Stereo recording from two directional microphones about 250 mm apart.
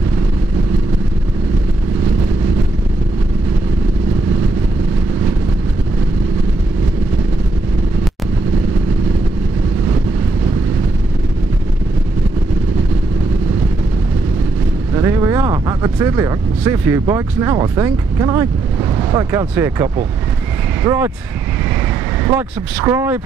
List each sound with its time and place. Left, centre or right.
15.0 s speech: centre
22.8 s speech: centre